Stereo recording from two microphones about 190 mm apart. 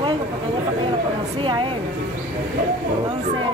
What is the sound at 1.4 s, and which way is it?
Speech, 25° right (ahead or behind).